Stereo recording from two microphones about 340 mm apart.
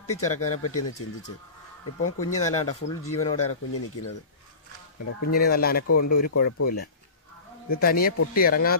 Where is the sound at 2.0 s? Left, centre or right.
Left.